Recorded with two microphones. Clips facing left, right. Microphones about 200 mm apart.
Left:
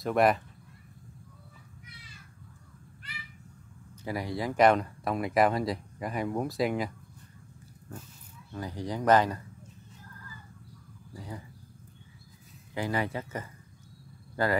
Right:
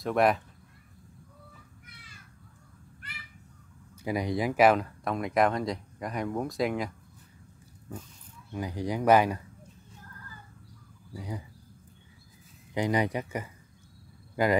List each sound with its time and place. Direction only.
0.0 s speech: centre (ahead or behind)
4.0 s speech: 15° right (ahead or behind); by 6.9 s centre (ahead or behind)
8.5 s speech: 15° right (ahead or behind)
11.1 s speech: 15° right (ahead or behind)
12.7 s speech: 20° right (ahead or behind)